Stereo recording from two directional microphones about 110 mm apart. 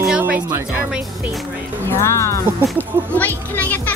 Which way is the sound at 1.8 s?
25° left (ahead or behind).